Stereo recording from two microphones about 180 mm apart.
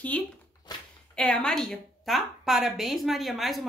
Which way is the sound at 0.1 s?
5° left (ahead or behind).